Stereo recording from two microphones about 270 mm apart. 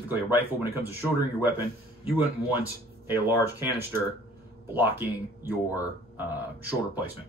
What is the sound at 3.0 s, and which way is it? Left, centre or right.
Speech, centre.